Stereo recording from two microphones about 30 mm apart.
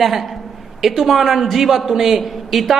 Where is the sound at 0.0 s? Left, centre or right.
Centre.